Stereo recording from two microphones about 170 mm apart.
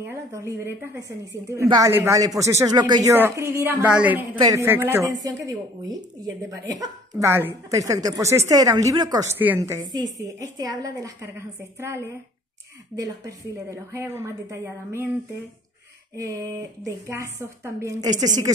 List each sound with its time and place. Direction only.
0.0 s a woman's voice: 15° right (ahead or behind)
16.2 s a woman's voice: 20° right (ahead or behind)